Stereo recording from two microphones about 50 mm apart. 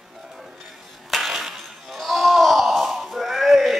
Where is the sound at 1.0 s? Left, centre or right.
Centre.